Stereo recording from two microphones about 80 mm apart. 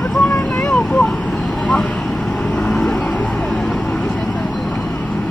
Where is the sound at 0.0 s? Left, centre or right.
Centre.